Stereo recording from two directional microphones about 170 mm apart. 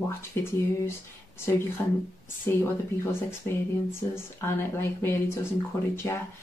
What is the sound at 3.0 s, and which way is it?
Speech, 15° left (ahead or behind).